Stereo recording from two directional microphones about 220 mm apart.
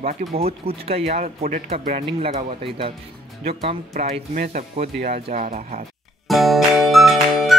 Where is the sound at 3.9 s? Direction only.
40° right (ahead or behind).